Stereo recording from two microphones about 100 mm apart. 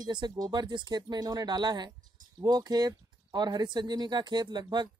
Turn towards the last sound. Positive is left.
turn(degrees=-45)  # may be behind; listen again after turning